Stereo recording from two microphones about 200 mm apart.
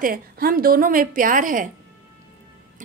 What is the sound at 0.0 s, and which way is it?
A woman's voice, 45° right (ahead or behind).